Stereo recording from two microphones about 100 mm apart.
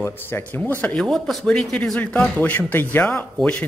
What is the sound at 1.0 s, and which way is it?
Speech, 5° left (ahead or behind).